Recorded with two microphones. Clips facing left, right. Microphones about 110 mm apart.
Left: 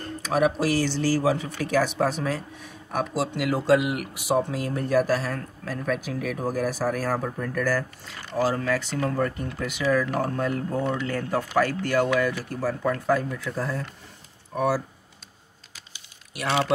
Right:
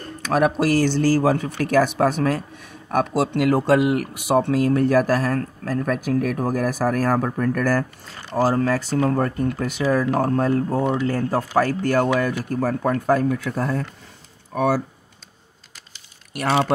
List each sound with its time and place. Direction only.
0.3 s speech: 55° right (ahead or behind)
8.4 s speech: 40° right (ahead or behind)
13.3 s speech: 65° right (ahead or behind)
16.3 s speech: 45° right (ahead or behind)